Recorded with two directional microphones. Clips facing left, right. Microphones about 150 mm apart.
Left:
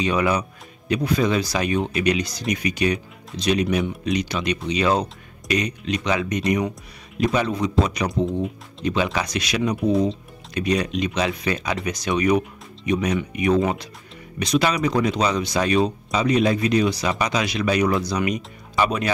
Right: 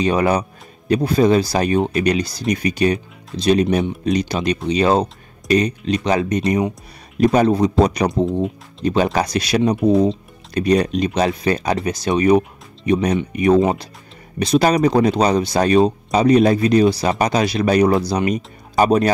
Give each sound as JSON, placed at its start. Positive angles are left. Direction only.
{"t": 0.0, "sound": "speech", "side_deg": -35}